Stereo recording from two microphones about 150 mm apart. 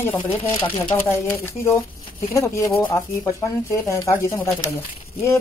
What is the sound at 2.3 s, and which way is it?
Speech, 20° left (ahead or behind).